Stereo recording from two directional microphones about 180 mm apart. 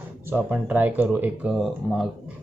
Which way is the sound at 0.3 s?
10° right (ahead or behind).